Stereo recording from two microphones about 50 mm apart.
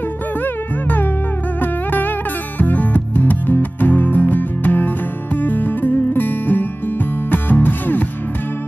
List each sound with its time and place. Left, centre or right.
1.6 s music: left